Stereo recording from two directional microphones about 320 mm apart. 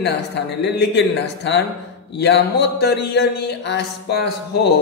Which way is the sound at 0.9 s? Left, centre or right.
Left.